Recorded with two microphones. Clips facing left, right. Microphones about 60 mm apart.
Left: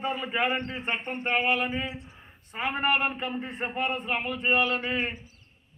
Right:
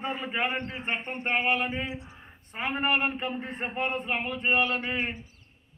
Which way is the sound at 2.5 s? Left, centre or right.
Right.